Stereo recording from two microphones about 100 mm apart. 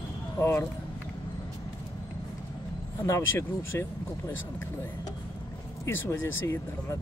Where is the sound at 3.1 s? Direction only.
25° left (ahead or behind).